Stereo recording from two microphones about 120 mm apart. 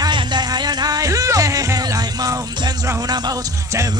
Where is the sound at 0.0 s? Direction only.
35° right (ahead or behind).